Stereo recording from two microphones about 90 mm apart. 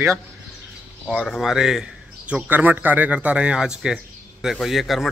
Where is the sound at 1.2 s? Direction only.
Centre (ahead or behind).